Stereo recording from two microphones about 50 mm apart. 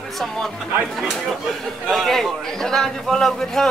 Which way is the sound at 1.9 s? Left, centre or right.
Centre.